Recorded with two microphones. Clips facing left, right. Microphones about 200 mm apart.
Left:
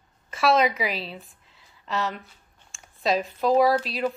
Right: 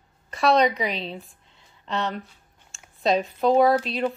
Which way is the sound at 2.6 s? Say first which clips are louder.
Right 2 dB; centre (ahead or behind).